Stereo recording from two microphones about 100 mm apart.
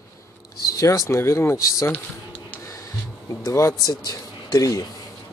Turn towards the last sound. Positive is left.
turn(degrees=35)  # may be behind; listen again after turning